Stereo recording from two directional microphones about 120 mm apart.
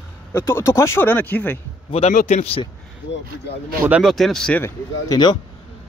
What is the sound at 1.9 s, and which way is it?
Speech, 65° left (ahead or behind).